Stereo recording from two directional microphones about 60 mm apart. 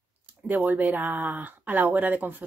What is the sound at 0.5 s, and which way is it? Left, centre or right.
Speech, right.